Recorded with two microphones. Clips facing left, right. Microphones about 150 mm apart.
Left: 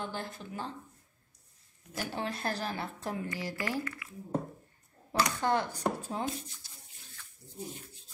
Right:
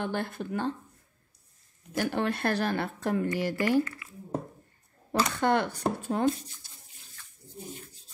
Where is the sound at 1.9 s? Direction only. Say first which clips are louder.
Right 8 dB; 65° right (ahead or behind).